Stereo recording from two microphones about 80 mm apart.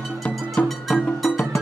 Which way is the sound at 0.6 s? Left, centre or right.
Centre.